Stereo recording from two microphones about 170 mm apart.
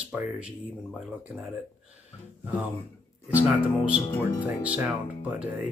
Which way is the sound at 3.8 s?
5° right (ahead or behind).